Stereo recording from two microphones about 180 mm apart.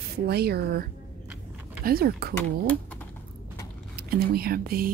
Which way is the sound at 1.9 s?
55° right (ahead or behind).